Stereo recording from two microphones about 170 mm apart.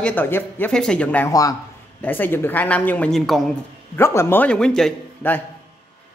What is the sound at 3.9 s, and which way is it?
A woman's voice, 15° left (ahead or behind).